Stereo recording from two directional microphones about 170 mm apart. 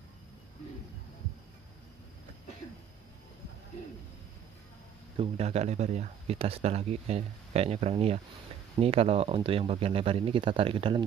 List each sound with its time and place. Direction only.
5.1 s speech: 35° right (ahead or behind)